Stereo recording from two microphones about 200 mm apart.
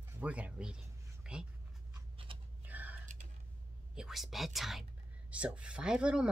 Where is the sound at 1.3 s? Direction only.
5° right (ahead or behind).